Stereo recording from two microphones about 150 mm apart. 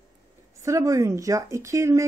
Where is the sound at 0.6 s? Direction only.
20° right (ahead or behind).